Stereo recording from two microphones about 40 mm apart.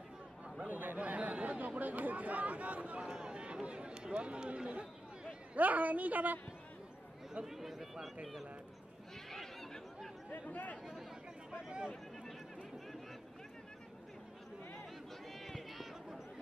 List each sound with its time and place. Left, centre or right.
0.7 s chatter: right
0.9 s chatter: right
3.1 s chatter: right
5.6 s a woman's voice: right
7.4 s speech: centre
9.3 s a sound: centre
10.3 s speech: left
15.3 s run: centre